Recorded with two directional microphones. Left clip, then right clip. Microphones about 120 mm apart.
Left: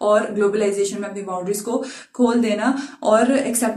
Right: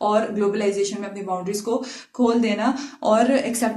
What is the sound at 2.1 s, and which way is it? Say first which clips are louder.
Speech: left 2 dB; 30° right (ahead or behind).